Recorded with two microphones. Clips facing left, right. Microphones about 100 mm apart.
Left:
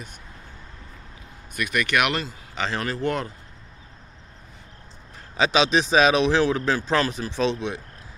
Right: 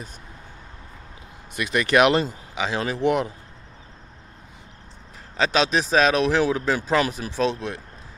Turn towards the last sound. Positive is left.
turn(degrees=0)  # may be behind; listen again after turning